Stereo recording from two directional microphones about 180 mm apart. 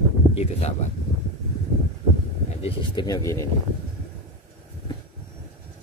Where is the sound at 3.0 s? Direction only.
20° left (ahead or behind).